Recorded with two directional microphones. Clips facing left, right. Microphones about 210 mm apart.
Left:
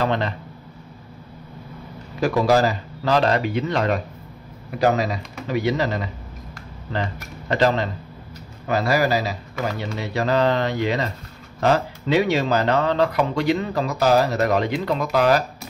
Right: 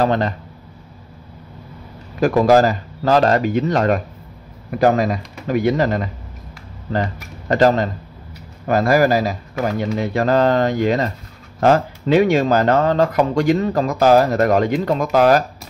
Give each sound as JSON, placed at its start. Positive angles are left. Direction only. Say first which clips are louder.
{"t": 0.0, "sound": "speech", "louder": "right 5 dB", "side_deg": -40}
{"t": 2.1, "sound": "speech", "louder": "right 5 dB", "side_deg": -50}
{"t": 7.4, "sound": "speech", "louder": "right 5 dB", "side_deg": -45}